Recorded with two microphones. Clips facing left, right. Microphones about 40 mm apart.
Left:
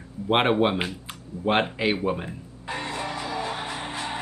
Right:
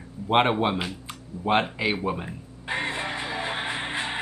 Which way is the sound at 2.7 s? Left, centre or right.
Right.